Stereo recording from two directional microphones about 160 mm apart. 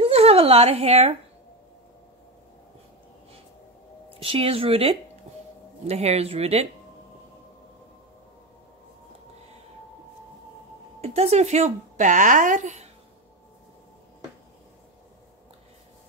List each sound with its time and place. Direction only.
0.0 s speech: 40° right (ahead or behind)
4.1 s speech: 35° right (ahead or behind)
11.0 s a woman's voice: 40° right (ahead or behind)